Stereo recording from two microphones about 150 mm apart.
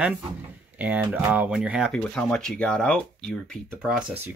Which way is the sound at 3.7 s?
5° right (ahead or behind).